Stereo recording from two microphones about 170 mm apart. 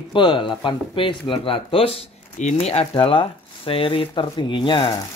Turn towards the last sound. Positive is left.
turn(degrees=30)  # may be behind; listen again after turning